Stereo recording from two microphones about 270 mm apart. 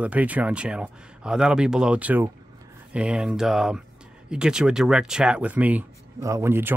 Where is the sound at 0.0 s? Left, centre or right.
Centre.